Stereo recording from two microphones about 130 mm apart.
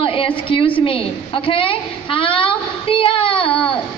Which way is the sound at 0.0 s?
45° left (ahead or behind).